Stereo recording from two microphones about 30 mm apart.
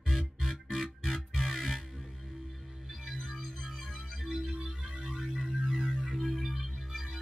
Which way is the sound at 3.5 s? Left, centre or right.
Centre.